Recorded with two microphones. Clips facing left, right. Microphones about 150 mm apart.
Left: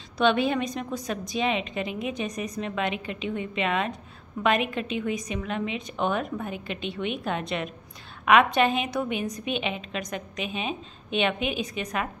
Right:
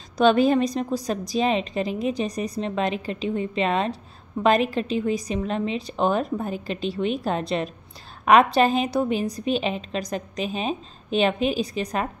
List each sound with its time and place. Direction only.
0.2 s a woman's voice: 40° right (ahead or behind)